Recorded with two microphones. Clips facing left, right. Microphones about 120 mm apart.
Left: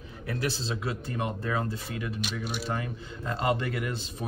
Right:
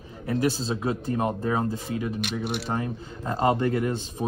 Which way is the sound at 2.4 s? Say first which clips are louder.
Right 4 dB; 65° right (ahead or behind).